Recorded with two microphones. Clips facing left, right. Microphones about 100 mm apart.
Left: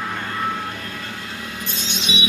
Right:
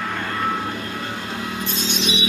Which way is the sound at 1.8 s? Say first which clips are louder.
Right 2 dB; 20° left (ahead or behind).